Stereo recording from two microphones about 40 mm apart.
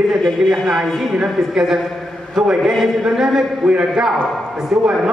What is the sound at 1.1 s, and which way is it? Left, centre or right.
A man's voice, centre.